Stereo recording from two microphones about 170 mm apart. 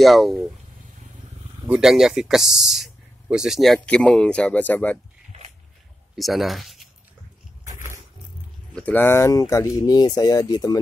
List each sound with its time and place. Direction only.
0.0 s speech: centre (ahead or behind)
1.7 s speech: 5° right (ahead or behind)
6.1 s speech: centre (ahead or behind)
8.7 s speech: 10° left (ahead or behind)